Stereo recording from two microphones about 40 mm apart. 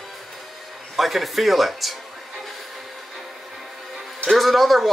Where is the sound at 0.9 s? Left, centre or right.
Centre.